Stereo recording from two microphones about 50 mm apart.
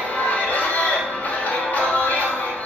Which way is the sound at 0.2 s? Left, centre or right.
Left.